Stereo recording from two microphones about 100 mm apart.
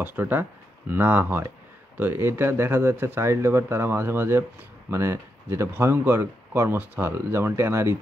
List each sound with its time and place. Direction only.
0.0 s speech: 20° right (ahead or behind)